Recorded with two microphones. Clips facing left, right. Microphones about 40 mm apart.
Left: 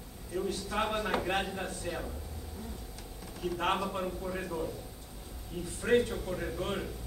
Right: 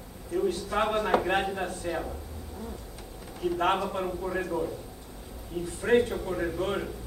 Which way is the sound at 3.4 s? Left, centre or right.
Centre.